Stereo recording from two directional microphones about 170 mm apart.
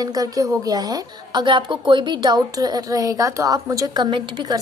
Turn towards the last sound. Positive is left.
turn(degrees=-25)  # may be behind; listen again after turning